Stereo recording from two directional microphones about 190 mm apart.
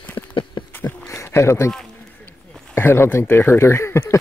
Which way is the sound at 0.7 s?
10° left (ahead or behind).